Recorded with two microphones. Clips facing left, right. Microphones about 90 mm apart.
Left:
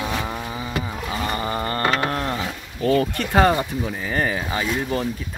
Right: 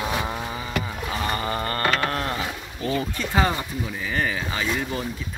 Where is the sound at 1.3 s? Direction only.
20° left (ahead or behind).